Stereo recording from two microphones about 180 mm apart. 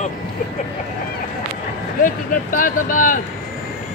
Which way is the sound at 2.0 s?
50° left (ahead or behind).